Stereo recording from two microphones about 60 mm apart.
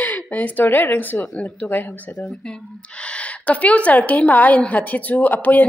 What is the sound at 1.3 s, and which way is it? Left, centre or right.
Speech, left.